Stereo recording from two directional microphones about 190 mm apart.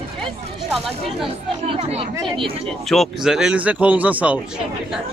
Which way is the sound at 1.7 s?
35° right (ahead or behind).